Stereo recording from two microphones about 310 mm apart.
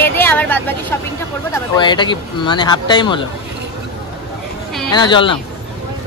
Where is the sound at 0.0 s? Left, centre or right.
Centre.